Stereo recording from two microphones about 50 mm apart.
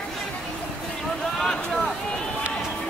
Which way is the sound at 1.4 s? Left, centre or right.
Centre.